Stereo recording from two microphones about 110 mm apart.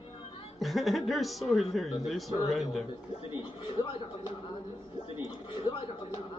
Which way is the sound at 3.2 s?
55° left (ahead or behind).